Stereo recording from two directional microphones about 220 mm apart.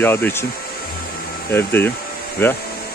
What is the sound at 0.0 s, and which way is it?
Speech, 10° left (ahead or behind).